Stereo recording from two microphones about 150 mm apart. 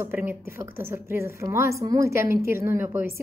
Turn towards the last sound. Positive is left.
turn(degrees=-15)  # may be behind; listen again after turning